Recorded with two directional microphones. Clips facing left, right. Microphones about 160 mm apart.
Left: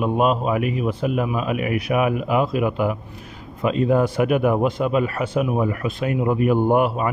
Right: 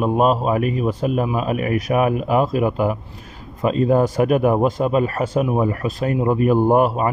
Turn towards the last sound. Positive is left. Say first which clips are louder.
# right 2 dB
turn(degrees=-40)  # may be behind; listen again after turning